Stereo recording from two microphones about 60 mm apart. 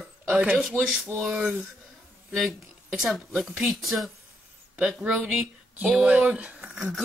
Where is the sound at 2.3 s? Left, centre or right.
Centre.